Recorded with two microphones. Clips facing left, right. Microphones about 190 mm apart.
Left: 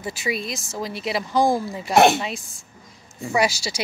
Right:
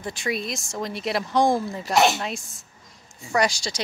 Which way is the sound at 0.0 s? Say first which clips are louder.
Left 1 dB; 5° left (ahead or behind).